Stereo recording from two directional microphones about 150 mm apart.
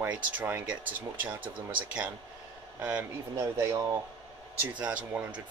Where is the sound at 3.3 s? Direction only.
20° right (ahead or behind).